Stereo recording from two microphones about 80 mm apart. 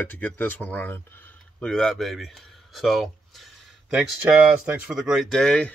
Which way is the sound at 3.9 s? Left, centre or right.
Centre.